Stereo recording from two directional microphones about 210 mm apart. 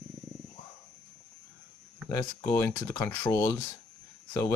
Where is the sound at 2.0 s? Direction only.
15° left (ahead or behind).